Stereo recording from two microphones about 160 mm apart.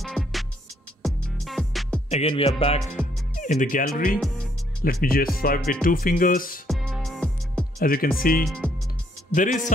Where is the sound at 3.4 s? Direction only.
55° left (ahead or behind).